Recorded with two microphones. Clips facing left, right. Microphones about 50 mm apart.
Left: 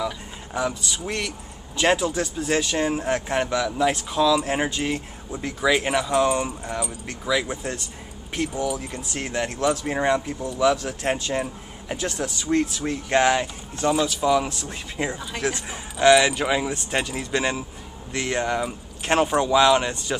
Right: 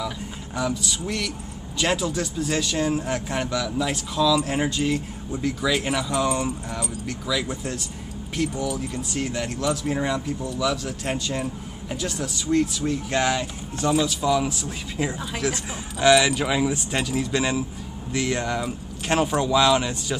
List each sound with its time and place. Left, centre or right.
0.6 s speech: centre
7.1 s speech: left
13.7 s speech: centre
15.0 s speech: centre
16.0 s speech: centre